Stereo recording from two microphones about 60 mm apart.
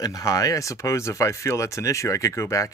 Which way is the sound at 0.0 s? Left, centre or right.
Left.